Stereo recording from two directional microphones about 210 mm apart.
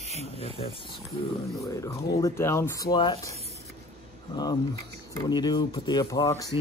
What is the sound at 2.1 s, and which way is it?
Speech, 15° left (ahead or behind).